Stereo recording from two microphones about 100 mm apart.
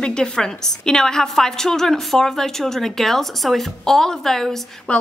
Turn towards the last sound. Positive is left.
turn(degrees=5)  # may be behind; listen again after turning